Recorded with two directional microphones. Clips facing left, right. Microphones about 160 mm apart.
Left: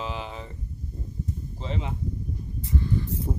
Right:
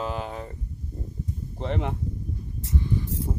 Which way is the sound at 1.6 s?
60° right (ahead or behind).